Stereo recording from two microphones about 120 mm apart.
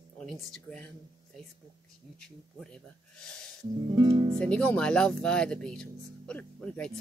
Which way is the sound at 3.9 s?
35° right (ahead or behind).